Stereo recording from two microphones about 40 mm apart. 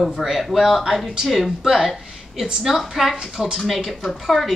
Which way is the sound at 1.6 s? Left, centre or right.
Centre.